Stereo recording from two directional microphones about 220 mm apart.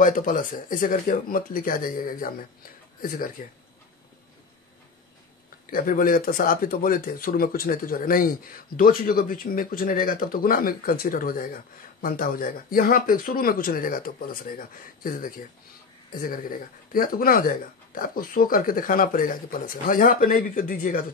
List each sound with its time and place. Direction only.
0.0 s speech: 35° left (ahead or behind)
5.7 s speech: 40° left (ahead or behind)